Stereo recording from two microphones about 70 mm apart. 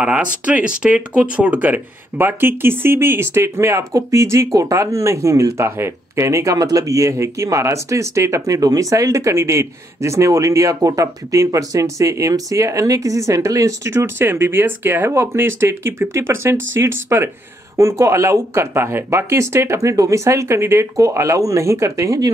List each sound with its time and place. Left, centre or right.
0.0 s speech: centre; by 17.3 s right
17.7 s speech: right